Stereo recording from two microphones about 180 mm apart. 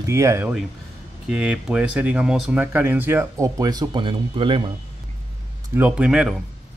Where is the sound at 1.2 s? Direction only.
5° right (ahead or behind); by 4.6 s 30° right (ahead or behind).